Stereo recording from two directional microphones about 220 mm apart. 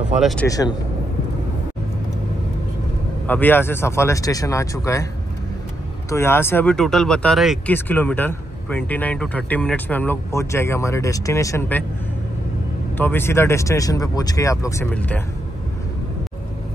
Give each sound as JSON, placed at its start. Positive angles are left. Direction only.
{"t": 0.2, "sound": "speech", "side_deg": 0}
{"t": 0.5, "sound": "speech", "side_deg": 15}
{"t": 3.3, "sound": "speech", "side_deg": 10}
{"t": 6.0, "sound": "speech", "side_deg": 10}
{"t": 12.9, "sound": "speech", "side_deg": 10}